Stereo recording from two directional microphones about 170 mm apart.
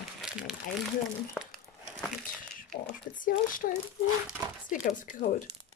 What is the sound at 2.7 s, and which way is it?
Speech, 50° left (ahead or behind).